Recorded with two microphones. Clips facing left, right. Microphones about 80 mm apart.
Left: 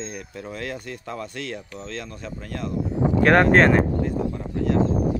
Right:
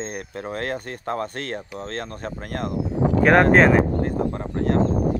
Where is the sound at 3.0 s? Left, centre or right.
Right.